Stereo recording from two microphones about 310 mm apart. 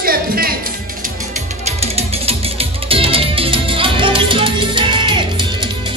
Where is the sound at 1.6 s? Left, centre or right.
Centre.